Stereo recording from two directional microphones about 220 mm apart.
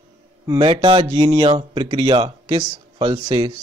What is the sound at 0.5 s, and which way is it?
Speech, 20° right (ahead or behind).